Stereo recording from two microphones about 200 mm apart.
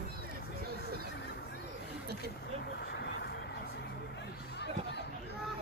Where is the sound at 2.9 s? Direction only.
55° left (ahead or behind).